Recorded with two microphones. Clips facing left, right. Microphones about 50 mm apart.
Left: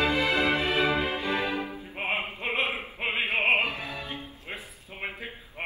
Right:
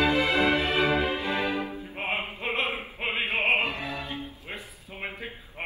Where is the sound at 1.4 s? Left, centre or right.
Right.